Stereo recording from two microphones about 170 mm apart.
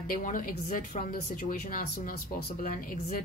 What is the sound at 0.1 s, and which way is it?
A woman's voice, 50° left (ahead or behind).